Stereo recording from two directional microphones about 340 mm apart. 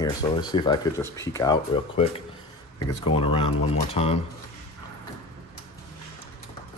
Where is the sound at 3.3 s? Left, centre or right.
Centre.